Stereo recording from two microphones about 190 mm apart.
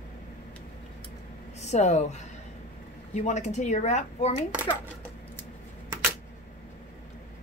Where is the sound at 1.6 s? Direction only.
35° left (ahead or behind).